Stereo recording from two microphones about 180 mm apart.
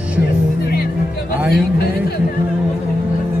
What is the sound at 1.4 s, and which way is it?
Speech, 65° left (ahead or behind).